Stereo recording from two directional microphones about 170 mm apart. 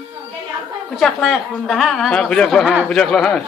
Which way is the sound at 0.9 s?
Centre (ahead or behind).